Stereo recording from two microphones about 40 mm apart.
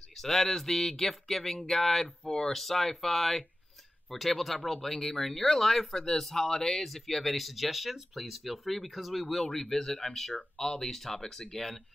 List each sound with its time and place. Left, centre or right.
0.2 s speech: centre